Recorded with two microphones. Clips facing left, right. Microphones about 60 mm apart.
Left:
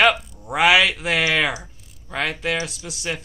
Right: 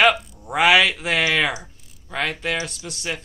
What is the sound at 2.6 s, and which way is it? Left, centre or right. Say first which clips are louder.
Speech: left 1 dB; centre.